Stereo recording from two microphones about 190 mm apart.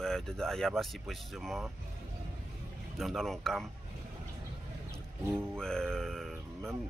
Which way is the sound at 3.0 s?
Centre (ahead or behind).